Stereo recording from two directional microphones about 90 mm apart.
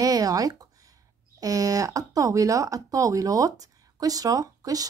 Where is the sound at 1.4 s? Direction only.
40° right (ahead or behind).